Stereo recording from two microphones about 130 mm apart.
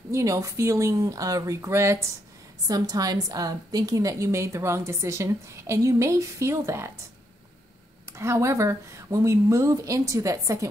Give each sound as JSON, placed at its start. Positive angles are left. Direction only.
{"t": 0.1, "sound": "a woman's voice", "side_deg": -25}
{"t": 8.1, "sound": "a woman's voice", "side_deg": -20}